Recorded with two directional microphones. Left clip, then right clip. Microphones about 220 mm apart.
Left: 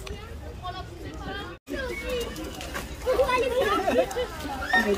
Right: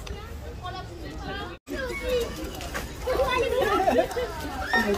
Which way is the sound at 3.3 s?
40° left (ahead or behind).